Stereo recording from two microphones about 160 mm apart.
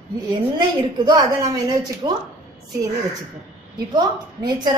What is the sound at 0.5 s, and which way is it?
A woman's voice, 30° right (ahead or behind).